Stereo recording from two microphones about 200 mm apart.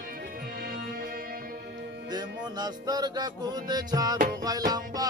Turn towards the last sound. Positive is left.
turn(degrees=-20)  # may be behind; listen again after turning